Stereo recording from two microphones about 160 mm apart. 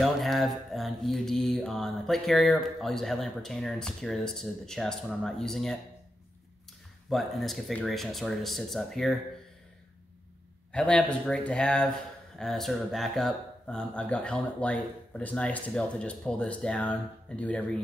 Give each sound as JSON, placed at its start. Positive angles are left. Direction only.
{"t": 0.0, "sound": "mantra", "side_deg": 0}
{"t": 7.1, "sound": "mantra", "side_deg": 0}
{"t": 10.7, "sound": "speech", "side_deg": 5}